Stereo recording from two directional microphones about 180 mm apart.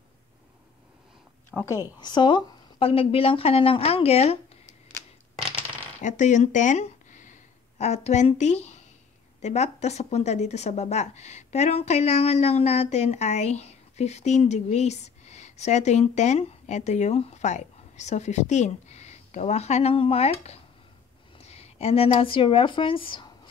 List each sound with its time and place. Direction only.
1.7 s speech: 20° left (ahead or behind)
5.9 s a woman's voice: 45° left (ahead or behind)